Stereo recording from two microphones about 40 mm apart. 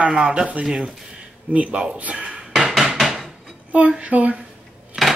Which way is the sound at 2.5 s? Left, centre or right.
Centre.